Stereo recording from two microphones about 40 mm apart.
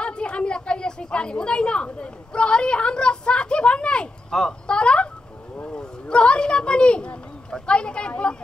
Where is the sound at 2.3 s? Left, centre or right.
Left.